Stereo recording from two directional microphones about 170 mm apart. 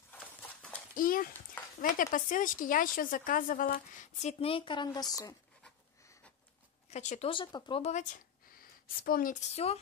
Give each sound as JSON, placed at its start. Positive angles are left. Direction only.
{"t": 0.1, "sound": "clip-clop", "side_deg": 10}
{"t": 0.9, "sound": "a child's voice", "side_deg": 55}
{"t": 6.9, "sound": "speech", "side_deg": 40}
{"t": 7.2, "sound": "speech", "side_deg": 30}
{"t": 7.8, "sound": "a woman's voice", "side_deg": 45}